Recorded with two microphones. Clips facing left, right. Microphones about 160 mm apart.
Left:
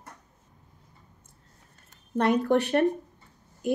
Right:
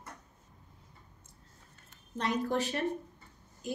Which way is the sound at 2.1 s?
60° left (ahead or behind).